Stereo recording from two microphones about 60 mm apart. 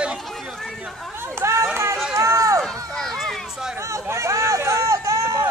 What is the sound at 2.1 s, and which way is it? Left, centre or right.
Run, right.